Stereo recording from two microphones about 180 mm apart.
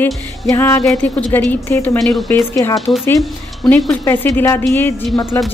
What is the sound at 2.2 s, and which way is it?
Speech, 15° left (ahead or behind).